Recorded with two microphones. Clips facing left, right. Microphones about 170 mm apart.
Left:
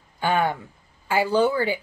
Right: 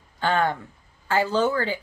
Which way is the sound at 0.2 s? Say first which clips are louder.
Even; 10° left (ahead or behind).